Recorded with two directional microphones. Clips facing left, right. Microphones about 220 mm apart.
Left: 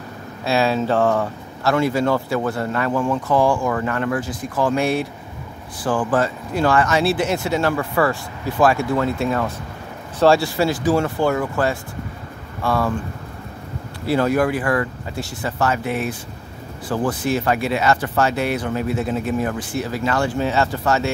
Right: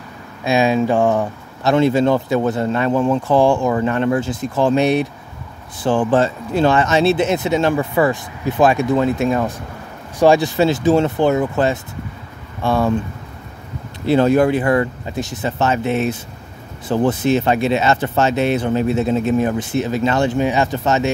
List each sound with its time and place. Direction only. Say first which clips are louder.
0.4 s speech: right 3 dB; 15° right (ahead or behind)
14.0 s speech: right 5 dB; 25° right (ahead or behind)